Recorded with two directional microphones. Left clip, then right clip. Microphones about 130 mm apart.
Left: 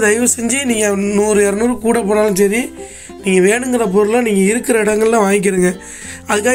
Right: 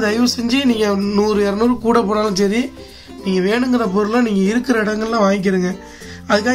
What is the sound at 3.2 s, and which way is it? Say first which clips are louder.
Speech: left 5 dB; 15° left (ahead or behind).